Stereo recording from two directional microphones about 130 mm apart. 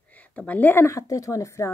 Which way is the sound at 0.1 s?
10° left (ahead or behind).